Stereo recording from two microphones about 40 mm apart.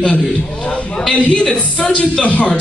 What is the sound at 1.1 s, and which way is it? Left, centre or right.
A man's voice, left.